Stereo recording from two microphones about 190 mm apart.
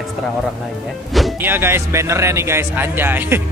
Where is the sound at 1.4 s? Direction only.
10° right (ahead or behind).